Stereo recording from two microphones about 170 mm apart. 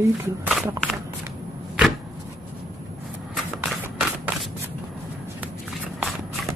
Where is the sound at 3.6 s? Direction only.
5° right (ahead or behind).